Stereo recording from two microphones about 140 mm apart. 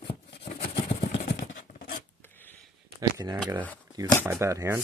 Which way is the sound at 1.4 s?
75° left (ahead or behind).